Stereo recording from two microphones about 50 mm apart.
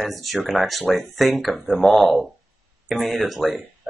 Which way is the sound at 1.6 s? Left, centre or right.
Left.